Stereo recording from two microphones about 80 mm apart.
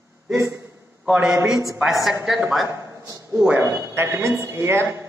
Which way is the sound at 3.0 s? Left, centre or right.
Right.